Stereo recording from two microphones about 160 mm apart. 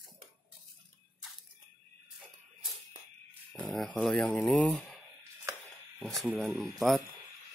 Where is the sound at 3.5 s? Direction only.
5° left (ahead or behind).